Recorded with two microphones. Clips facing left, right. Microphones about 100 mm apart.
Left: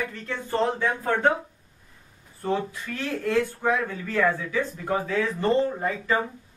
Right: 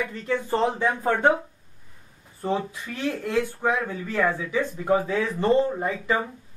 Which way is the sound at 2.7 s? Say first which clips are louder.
Right 2 dB; 20° right (ahead or behind).